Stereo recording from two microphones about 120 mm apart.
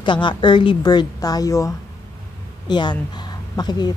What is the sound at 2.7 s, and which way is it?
A woman's voice, 40° left (ahead or behind).